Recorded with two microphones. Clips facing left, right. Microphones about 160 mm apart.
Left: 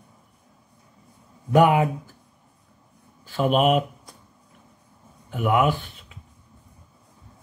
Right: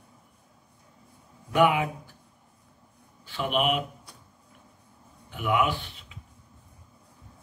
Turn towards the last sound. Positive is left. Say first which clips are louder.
# left 6 dB
turn(degrees=45)  # may be behind; listen again after turning